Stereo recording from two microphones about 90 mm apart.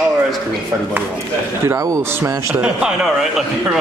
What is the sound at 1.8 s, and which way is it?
Speech, 40° right (ahead or behind).